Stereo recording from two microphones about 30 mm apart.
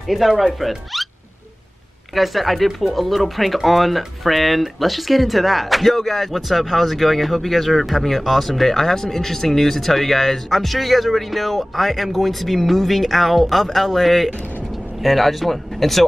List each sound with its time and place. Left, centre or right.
0.0 s speech: centre
2.1 s speech: centre